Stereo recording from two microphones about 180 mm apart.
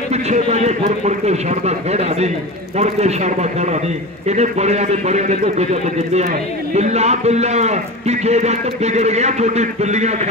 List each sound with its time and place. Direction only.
0.1 s a man's voice: 40° right (ahead or behind)